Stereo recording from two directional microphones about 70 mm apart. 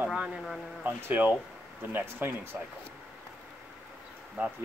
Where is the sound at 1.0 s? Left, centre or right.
Right.